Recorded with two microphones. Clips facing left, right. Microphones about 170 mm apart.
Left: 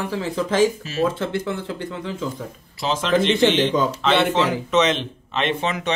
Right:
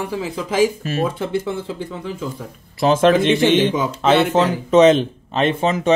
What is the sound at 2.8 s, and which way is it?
Speech, 55° right (ahead or behind).